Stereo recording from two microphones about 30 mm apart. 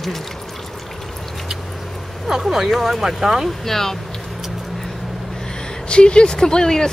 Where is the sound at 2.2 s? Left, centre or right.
Centre.